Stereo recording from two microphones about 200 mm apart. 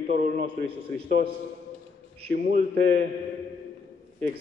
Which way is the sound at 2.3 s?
45° right (ahead or behind).